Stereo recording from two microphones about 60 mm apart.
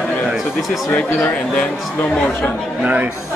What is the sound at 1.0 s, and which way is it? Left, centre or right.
Speech, left.